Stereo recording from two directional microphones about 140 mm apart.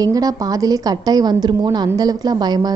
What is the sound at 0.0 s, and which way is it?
A woman's voice, 25° right (ahead or behind).